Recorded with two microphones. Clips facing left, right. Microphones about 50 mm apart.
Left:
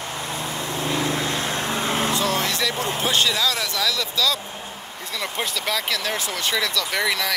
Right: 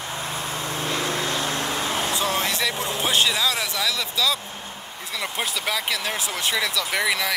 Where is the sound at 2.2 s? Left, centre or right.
Right.